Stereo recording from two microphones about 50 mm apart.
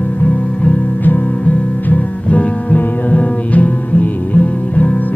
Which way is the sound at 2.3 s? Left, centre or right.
Left.